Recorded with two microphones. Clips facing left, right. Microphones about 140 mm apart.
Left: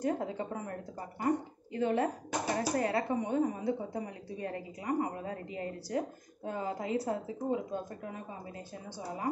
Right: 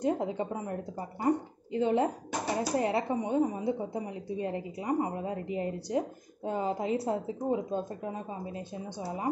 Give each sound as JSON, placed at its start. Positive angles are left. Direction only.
{"t": 0.0, "sound": "speech", "side_deg": -20}